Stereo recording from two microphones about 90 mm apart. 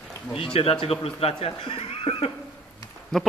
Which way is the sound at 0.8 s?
90° left.